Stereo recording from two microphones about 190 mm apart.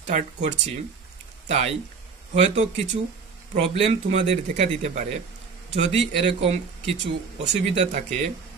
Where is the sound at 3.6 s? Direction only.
35° right (ahead or behind).